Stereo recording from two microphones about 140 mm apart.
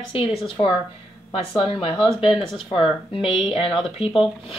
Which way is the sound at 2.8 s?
40° left (ahead or behind).